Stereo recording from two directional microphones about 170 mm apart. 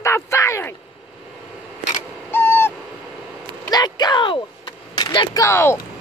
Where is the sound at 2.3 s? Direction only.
10° left (ahead or behind).